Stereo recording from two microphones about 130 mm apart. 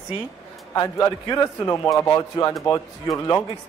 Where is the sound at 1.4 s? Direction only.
20° left (ahead or behind).